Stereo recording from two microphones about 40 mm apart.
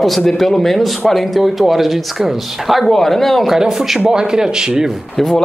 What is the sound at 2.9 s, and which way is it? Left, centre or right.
Speech, centre.